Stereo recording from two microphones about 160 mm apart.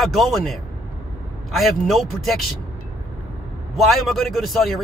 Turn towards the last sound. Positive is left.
turn(degrees=0)  # may be behind; listen again after turning